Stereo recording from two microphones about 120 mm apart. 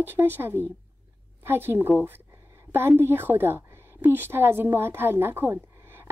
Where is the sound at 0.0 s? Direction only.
15° right (ahead or behind).